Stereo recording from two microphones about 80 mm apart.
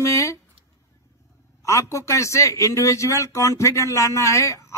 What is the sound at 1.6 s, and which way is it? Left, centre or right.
A man's voice, left.